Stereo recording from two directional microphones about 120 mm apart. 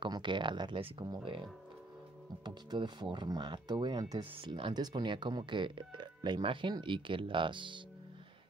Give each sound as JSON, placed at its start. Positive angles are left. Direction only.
{"t": 0.0, "sound": "speech", "side_deg": -40}
{"t": 2.4, "sound": "speech", "side_deg": -35}
{"t": 4.4, "sound": "speech", "side_deg": -45}